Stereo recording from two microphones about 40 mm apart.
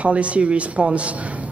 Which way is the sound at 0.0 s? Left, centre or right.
Right.